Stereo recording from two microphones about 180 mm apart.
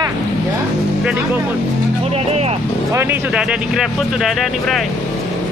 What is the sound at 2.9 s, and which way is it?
Speech, 15° right (ahead or behind).